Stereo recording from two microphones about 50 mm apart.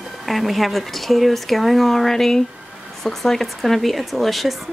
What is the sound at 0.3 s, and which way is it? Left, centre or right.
Speech, centre.